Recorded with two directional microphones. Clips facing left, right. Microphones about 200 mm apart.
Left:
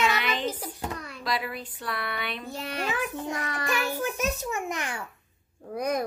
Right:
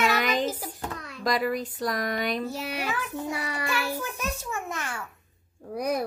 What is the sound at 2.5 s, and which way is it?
Speech, 10° right (ahead or behind).